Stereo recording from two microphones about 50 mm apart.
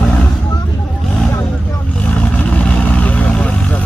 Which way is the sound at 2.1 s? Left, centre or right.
Left.